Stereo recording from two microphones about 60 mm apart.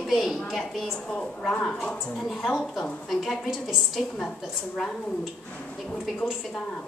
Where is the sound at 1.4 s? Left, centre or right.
Centre.